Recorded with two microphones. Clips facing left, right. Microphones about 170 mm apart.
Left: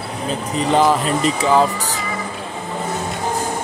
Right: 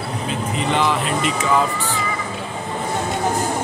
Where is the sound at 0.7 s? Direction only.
40° left (ahead or behind).